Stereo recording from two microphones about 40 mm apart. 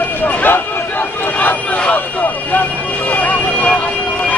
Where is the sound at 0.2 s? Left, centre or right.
Left.